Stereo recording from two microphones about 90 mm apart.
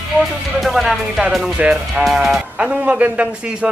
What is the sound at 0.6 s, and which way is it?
A man's voice, centre (ahead or behind).